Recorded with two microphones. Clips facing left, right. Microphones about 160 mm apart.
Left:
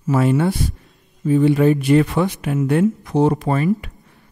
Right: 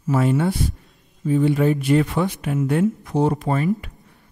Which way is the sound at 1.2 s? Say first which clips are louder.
Left 4 dB; 85° left.